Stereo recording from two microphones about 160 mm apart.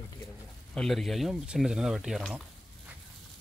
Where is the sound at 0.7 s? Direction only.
Centre (ahead or behind).